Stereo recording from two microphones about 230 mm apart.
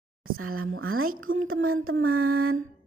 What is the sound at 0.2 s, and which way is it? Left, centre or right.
Speech, right.